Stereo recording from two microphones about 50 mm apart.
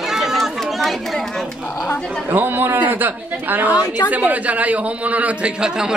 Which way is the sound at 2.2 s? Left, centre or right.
Right.